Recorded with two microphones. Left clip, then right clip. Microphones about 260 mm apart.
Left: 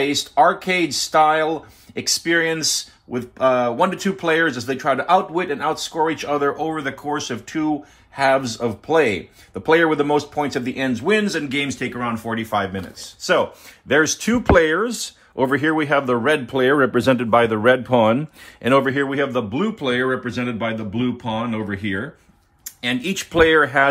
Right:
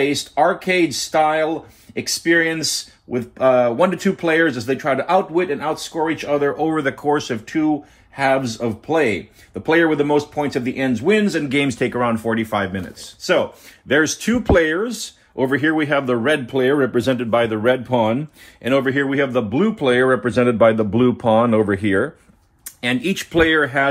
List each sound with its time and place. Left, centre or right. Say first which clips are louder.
0.0 s speech: left 1 dB; centre
11.3 s speech: right 4 dB; centre
22.8 s speech: right 2 dB; centre; by 23.9 s left